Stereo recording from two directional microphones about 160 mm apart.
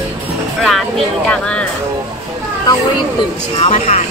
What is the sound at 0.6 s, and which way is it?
Speech, centre (ahead or behind).